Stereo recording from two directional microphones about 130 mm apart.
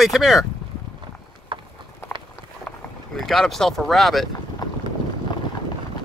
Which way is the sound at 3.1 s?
Centre (ahead or behind).